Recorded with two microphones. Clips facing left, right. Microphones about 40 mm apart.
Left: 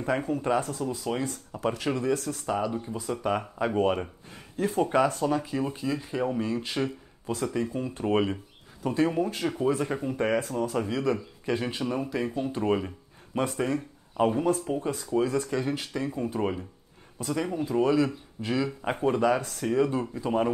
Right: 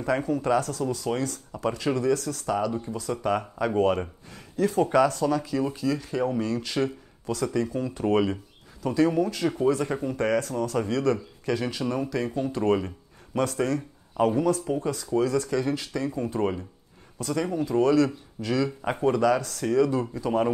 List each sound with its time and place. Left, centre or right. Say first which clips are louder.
0.0 s speech: right 2 dB; left
1.3 s speech: right 1 dB; left
2.4 s speech: right 2 dB; centre
4.3 s speech: right 4 dB; left
4.8 s speech: right 1 dB; left
7.6 s speech: right 2 dB; left
8.0 s speech: right 2 dB; centre
11.1 s speech: right 1 dB; left
11.8 s speech: right 2 dB; centre
13.3 s speech: right 2 dB; left
16.3 s speech: right 2 dB; centre
19.1 s speech: right 2 dB; left